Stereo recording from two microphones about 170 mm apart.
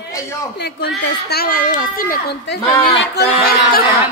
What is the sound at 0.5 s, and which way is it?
Speech, 70° left (ahead or behind).